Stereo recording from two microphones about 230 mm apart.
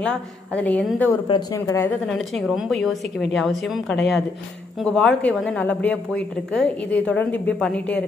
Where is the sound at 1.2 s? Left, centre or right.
Centre.